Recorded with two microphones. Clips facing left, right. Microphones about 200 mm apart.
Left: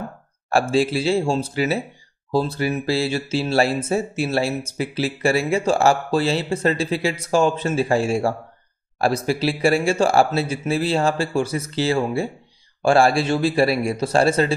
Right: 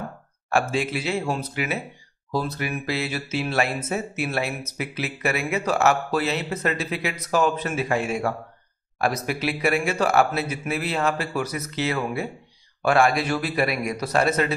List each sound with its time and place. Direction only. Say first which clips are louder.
0.5 s speech: left 5 dB; 35° left (ahead or behind)